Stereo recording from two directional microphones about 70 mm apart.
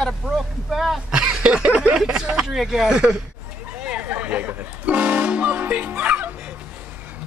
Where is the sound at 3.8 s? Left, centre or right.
Centre.